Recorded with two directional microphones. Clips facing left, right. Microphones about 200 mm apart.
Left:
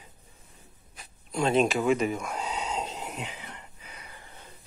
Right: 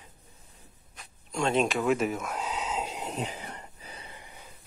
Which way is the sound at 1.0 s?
5° left (ahead or behind).